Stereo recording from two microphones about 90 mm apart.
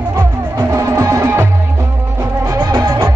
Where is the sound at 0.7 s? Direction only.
35° right (ahead or behind).